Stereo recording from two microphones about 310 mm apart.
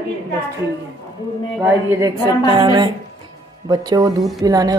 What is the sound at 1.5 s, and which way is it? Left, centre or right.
Music, centre.